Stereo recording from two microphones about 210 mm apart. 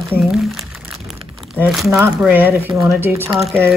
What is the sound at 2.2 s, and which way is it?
Speech, 10° right (ahead or behind).